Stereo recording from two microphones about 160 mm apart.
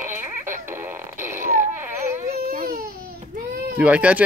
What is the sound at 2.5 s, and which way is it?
Baby cry, 65° right (ahead or behind).